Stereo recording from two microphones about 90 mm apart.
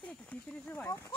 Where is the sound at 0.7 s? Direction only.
25° left (ahead or behind).